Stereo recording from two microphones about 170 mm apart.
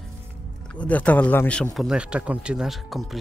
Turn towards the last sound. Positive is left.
turn(degrees=0)  # may be behind; listen again after turning